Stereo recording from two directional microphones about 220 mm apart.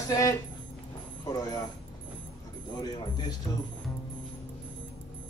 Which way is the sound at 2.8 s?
20° left (ahead or behind).